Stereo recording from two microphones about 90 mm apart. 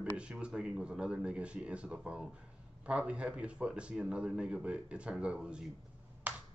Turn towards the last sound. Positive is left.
turn(degrees=-15)  # may be behind; listen again after turning